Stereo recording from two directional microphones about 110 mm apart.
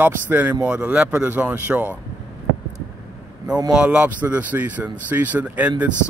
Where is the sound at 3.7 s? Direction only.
10° right (ahead or behind).